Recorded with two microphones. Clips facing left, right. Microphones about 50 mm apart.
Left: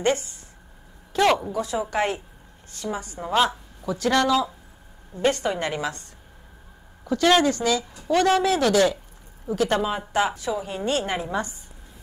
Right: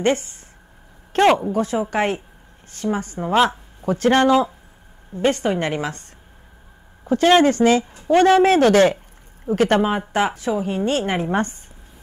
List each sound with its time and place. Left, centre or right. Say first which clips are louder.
0.0 s speech: right 3 dB; right
1.1 s speech: right 5 dB; right
1.5 s speech: right 5 dB; right
7.1 s speech: right 5 dB; right